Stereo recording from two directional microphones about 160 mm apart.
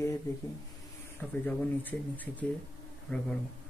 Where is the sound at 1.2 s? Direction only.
10° left (ahead or behind).